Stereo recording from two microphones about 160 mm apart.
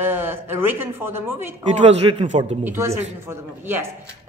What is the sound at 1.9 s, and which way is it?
Speech, 35° right (ahead or behind).